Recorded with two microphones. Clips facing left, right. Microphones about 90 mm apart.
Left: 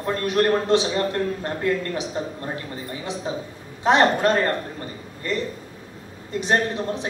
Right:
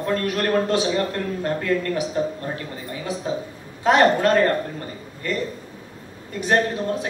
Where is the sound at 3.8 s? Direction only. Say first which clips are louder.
Right 1 dB; 20° left (ahead or behind).